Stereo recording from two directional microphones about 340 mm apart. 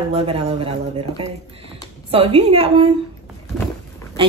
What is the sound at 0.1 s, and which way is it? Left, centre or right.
Speech, centre.